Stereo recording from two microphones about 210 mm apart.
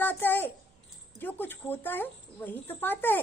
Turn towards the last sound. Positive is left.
turn(degrees=10)  # may be behind; listen again after turning